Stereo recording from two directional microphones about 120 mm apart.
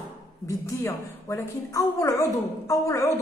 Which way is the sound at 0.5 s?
25° left (ahead or behind).